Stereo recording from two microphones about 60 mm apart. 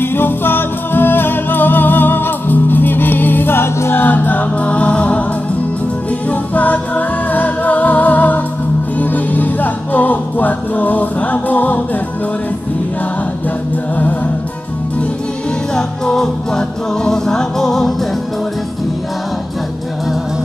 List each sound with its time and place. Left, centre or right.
0.0 s music: left
6.2 s music: left
15.7 s music: centre